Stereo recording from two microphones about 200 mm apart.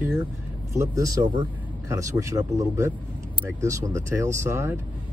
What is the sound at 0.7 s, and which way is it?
Speech, 15° right (ahead or behind).